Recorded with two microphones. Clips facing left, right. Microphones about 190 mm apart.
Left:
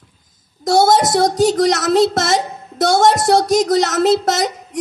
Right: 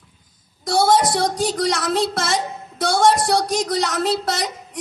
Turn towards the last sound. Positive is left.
turn(degrees=45)  # may be behind; listen again after turning